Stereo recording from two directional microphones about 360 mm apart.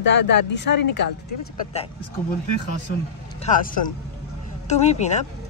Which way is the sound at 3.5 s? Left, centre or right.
Left.